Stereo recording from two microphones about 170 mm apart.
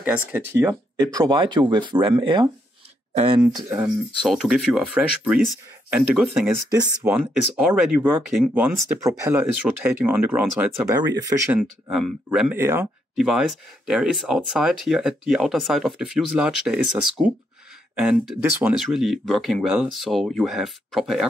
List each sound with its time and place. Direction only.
0.0 s speech: 10° right (ahead or behind); by 2.5 s 25° right (ahead or behind)
3.6 s speech: 5° right (ahead or behind)